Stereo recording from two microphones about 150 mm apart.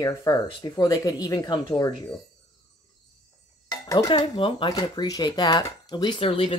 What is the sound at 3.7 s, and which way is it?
Dishes, 25° left (ahead or behind).